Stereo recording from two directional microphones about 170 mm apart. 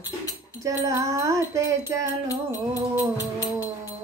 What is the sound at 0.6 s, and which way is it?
Wind chime, 20° right (ahead or behind).